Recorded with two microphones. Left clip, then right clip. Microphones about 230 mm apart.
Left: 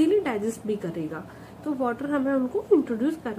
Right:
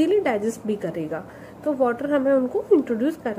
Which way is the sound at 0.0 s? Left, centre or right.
Centre.